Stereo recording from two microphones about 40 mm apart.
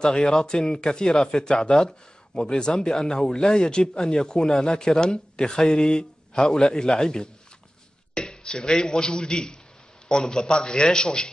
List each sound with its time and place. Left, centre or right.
0.0 s speech: centre